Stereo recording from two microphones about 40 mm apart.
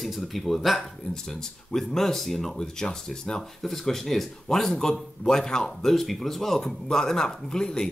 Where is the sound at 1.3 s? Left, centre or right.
Centre.